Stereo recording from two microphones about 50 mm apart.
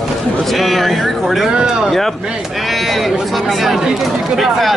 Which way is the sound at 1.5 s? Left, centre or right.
Centre.